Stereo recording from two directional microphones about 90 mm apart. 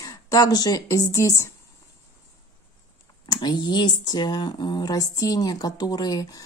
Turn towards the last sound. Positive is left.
turn(degrees=45)  # may be behind; listen again after turning